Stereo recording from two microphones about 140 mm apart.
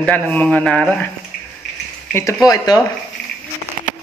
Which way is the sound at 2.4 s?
30° left (ahead or behind).